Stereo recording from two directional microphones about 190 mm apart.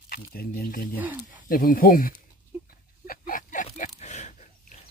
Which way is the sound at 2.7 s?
50° left (ahead or behind).